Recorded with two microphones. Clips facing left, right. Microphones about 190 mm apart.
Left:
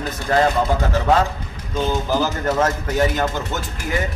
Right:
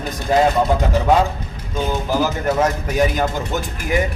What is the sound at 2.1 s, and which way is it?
A man's voice, 10° right (ahead or behind).